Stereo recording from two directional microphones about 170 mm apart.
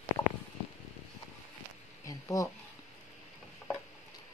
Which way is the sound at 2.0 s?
20° left (ahead or behind).